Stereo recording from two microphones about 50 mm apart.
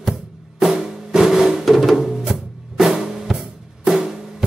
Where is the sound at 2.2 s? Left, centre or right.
Centre.